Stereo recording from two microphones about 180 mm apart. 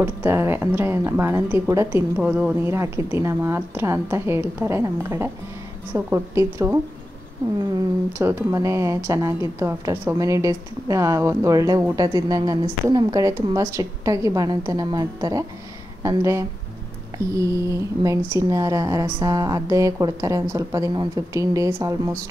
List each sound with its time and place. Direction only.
0.0 s a woman's voice: 15° right (ahead or behind)
8.2 s a woman's voice: 15° right (ahead or behind)